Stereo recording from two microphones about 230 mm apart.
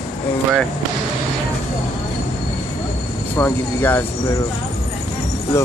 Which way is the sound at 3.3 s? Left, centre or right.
Centre.